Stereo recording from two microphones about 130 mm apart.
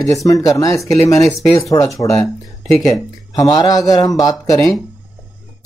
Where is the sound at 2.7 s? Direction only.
Centre (ahead or behind).